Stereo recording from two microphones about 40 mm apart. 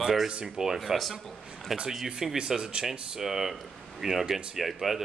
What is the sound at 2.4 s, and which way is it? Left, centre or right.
Speech, centre.